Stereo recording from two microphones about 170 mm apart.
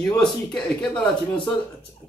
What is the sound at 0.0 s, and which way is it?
Speech, 5° left (ahead or behind).